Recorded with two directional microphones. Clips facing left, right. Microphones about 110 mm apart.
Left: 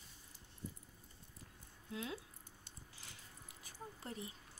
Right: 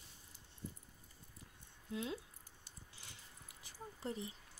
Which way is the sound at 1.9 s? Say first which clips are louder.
Right 2 dB; 25° right (ahead or behind).